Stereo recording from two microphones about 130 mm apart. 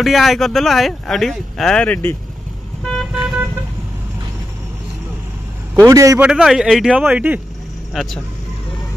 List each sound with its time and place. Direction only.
0.0 s speech: centre (ahead or behind)
2.8 s vehicle: 5° left (ahead or behind)
5.9 s a man's voice: 25° right (ahead or behind)
6.1 s a man's voice: 5° right (ahead or behind)
7.9 s speech: centre (ahead or behind)